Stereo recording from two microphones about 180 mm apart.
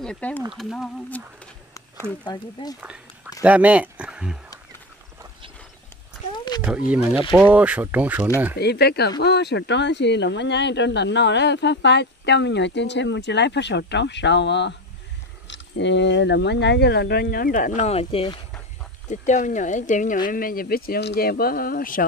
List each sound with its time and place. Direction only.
0.0 s speech: 5° left (ahead or behind)
2.2 s speech: 20° left (ahead or behind)
3.4 s speech: 10° right (ahead or behind)
6.3 s a sound: 25° left (ahead or behind)
7.3 s speech: 10° right (ahead or behind)
8.5 s speech: 65° left (ahead or behind); by 18.4 s 30° left (ahead or behind)
19.0 s speech: 45° left (ahead or behind)